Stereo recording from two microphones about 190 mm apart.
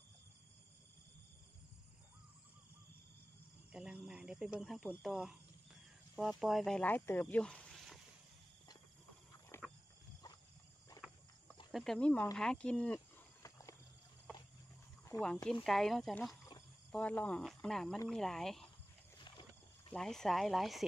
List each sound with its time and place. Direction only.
3.7 s cricket: 5° right (ahead or behind)
4.8 s speech: centre (ahead or behind)
9.5 s wild animals: 15° left (ahead or behind)
11.7 s speech: centre (ahead or behind)
13.4 s wild animals: 20° left (ahead or behind)
15.6 s speech: centre (ahead or behind)
19.1 s wild animals: 25° left (ahead or behind)
19.9 s speech: centre (ahead or behind)